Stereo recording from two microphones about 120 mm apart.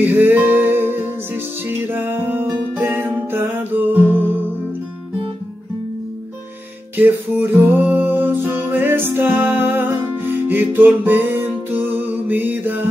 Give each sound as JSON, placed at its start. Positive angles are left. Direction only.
{"t": 0.0, "sound": "music", "side_deg": -15}
{"t": 7.0, "sound": "music", "side_deg": -15}